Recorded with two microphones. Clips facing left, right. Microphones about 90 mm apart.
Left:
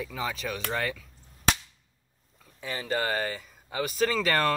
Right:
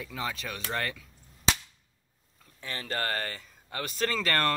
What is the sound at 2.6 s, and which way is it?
Speech, 10° left (ahead or behind).